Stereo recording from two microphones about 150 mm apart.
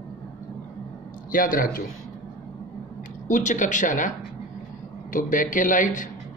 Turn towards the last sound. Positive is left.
turn(degrees=60)  # may be behind; listen again after turning